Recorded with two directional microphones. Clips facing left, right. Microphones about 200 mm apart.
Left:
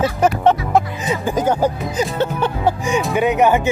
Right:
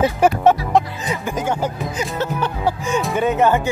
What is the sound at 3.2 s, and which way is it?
Speech, 15° left (ahead or behind).